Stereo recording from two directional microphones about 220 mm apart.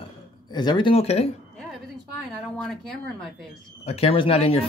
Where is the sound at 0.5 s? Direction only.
20° left (ahead or behind).